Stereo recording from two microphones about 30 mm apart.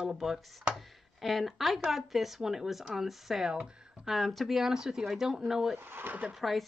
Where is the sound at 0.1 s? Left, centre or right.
Centre.